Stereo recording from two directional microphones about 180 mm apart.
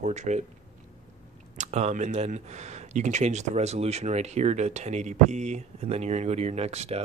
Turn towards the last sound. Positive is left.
turn(degrees=-35)  # may be behind; listen again after turning